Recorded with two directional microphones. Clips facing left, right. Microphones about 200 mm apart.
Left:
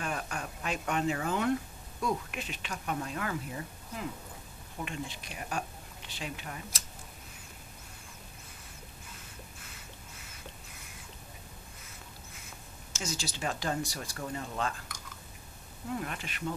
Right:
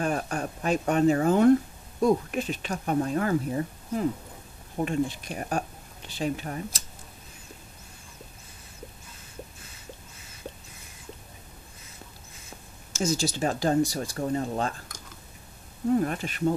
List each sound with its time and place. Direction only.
0.0 s speech: 40° right (ahead or behind)
12.9 s speech: 45° right (ahead or behind)